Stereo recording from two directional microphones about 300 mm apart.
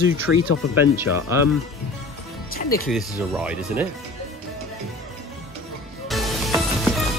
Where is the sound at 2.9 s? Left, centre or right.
Centre.